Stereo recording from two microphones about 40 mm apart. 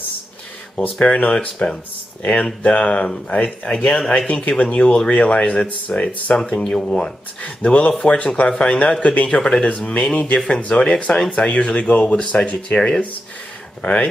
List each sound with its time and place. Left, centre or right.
0.9 s speech: left
6.3 s speech: left
12.7 s speech: centre
13.8 s speech: left